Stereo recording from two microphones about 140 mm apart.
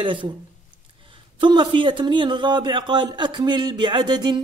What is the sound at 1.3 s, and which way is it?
Speech, 35° right (ahead or behind).